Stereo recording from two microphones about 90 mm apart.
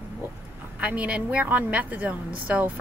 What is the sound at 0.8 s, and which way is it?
A woman's voice, 15° right (ahead or behind).